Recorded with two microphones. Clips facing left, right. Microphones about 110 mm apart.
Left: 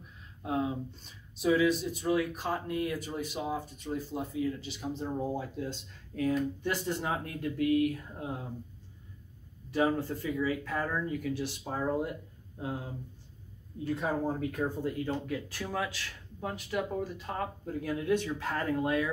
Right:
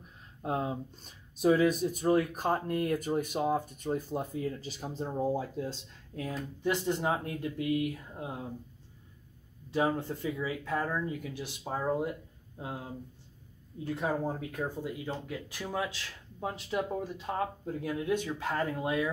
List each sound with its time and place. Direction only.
0.4 s speech: 40° right (ahead or behind); by 8.3 s 20° right (ahead or behind)
9.7 s speech: 25° right (ahead or behind)
14.0 s speech: 5° right (ahead or behind)